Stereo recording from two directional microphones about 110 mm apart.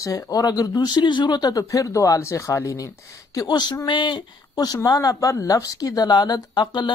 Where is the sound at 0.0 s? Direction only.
35° left (ahead or behind).